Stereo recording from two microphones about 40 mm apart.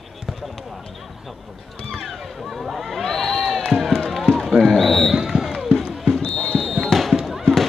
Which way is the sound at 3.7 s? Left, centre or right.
Centre.